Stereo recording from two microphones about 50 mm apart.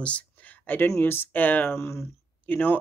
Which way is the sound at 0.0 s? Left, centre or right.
Left.